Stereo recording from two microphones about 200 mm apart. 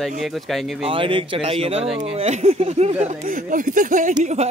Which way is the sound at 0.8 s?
25° right (ahead or behind).